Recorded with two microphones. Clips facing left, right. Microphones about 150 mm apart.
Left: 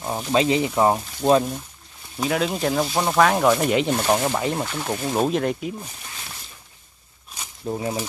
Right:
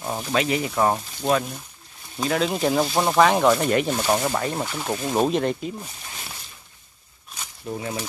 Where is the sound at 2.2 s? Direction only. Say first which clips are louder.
Even; 5° left (ahead or behind).